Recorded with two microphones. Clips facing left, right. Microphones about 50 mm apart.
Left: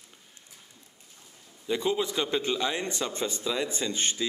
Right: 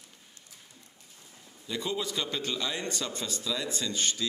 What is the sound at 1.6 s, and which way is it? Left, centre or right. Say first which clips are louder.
A man's voice: left 5 dB; left.